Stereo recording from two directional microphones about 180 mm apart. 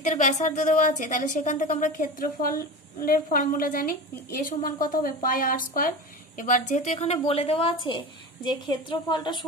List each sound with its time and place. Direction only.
0.0 s a woman's voice: 45° left (ahead or behind); by 9.4 s 25° left (ahead or behind)